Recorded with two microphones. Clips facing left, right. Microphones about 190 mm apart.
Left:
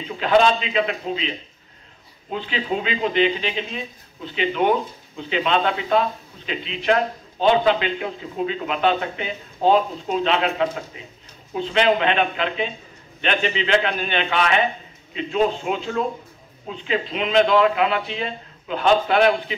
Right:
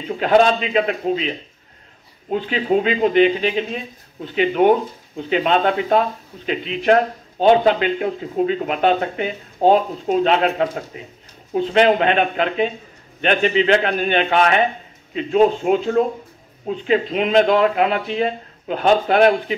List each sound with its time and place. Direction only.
0.2 s speech: 45° right (ahead or behind)
2.3 s speech: 45° right (ahead or behind)